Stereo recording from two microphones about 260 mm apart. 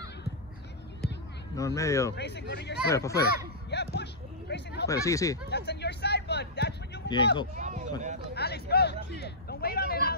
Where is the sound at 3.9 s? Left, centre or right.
Left.